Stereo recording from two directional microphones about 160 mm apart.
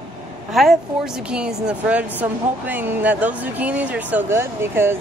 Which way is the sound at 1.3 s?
5° right (ahead or behind).